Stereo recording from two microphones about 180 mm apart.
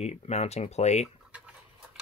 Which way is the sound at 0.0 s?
35° left (ahead or behind).